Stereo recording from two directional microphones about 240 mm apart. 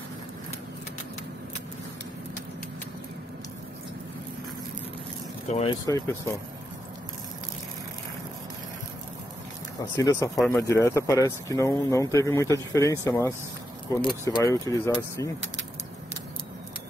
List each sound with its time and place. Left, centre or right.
5.5 s speech: left
5.9 s speech: centre
9.9 s speech: centre
10.3 s speech: centre
10.6 s speech: centre